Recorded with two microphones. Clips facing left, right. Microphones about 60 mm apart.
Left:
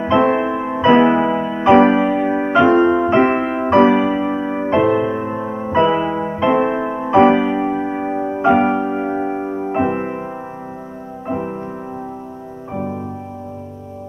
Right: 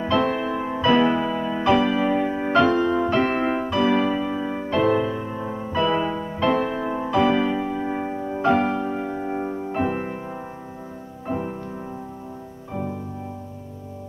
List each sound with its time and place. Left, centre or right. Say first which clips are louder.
0.0 s music: left 7 dB; left
1.4 s music: left 4 dB; centre
1.7 s music: left 9 dB; left
2.2 s music: left 6 dB; left
2.7 s music: left 7 dB; left
3.9 s music: left 5 dB; centre
4.8 s music: left 4 dB; centre
5.1 s music: left 7 dB; left
7.3 s music: left 6 dB; left
11.2 s music: left 4 dB; centre
12.7 s music: left 5 dB; left